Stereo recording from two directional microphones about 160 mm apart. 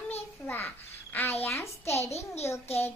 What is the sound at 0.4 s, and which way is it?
A child's voice, 10° left (ahead or behind).